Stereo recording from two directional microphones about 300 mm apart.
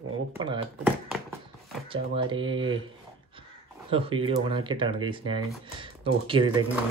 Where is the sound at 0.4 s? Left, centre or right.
Centre.